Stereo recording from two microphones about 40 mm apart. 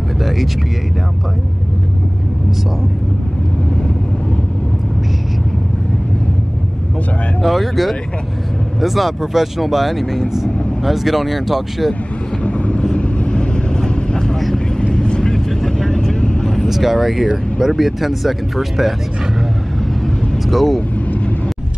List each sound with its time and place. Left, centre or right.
7.4 s speech: centre
12.4 s vehicle: left; by 16.0 s centre
16.1 s vehicle: left
16.6 s speech: centre
20.4 s speech: centre